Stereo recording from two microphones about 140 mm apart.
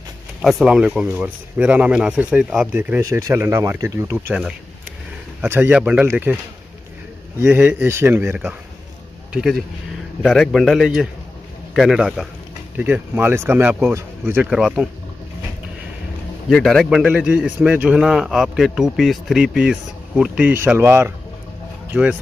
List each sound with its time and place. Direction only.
0.4 s speech: centre (ahead or behind)
3.0 s speech: 20° right (ahead or behind)
5.4 s speech: 15° right (ahead or behind)
9.3 s a man's voice: 5° right (ahead or behind)
14.5 s a man's voice: 5° right (ahead or behind)
16.4 s a man's voice: centre (ahead or behind)